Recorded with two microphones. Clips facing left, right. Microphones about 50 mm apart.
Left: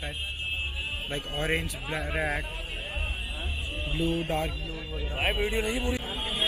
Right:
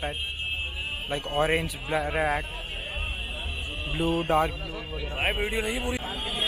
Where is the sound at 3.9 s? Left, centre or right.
Centre.